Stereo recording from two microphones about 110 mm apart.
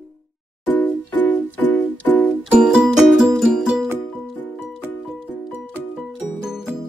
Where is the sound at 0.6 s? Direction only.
15° left (ahead or behind).